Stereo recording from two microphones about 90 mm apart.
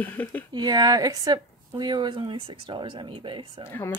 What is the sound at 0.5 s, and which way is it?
Speech, 50° right (ahead or behind).